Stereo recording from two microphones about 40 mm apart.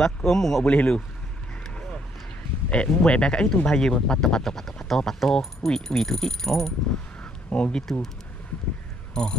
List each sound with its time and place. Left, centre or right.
0.0 s speech: centre
0.7 s a man's voice: left
2.7 s speech: left
4.4 s speech: centre
7.4 s speech: left
9.1 s speech: centre